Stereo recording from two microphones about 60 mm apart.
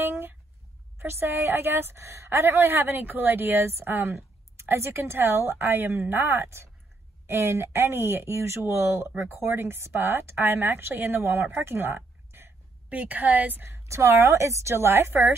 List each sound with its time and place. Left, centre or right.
0.0 s a sound: right
0.9 s a woman's voice: right
12.9 s a woman's voice: right
13.7 s a woman's voice: right